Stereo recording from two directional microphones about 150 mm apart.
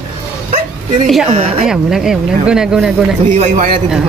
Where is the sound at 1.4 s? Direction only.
40° right (ahead or behind).